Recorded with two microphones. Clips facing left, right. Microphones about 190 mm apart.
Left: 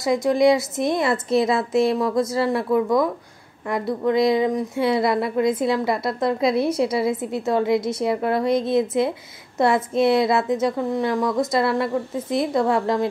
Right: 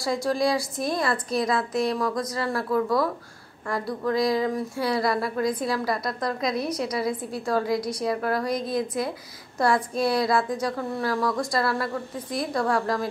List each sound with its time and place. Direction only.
0.0 s a woman's voice: 20° left (ahead or behind)